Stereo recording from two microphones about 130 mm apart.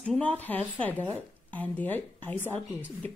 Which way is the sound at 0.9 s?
15° right (ahead or behind).